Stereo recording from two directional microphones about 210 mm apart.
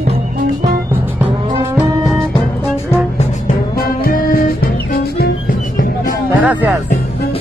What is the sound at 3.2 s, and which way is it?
Music, 40° left (ahead or behind).